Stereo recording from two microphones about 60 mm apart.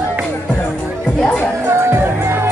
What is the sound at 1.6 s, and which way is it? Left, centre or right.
Music, right.